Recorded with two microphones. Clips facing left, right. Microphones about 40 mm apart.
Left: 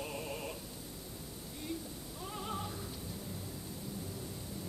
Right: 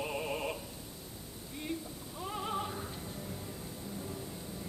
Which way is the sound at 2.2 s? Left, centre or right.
Right.